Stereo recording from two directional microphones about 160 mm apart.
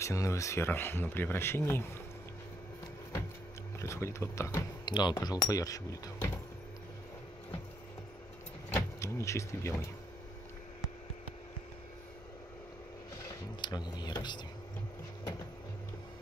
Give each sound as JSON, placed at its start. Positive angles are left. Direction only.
{"t": 0.0, "sound": "speech", "side_deg": 20}
{"t": 3.8, "sound": "speech", "side_deg": 15}
{"t": 8.6, "sound": "vehicle", "side_deg": 15}
{"t": 13.6, "sound": "speech", "side_deg": 25}